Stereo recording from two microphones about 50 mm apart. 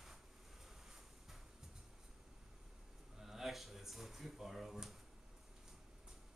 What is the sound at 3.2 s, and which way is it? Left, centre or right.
Drawer open or close, centre.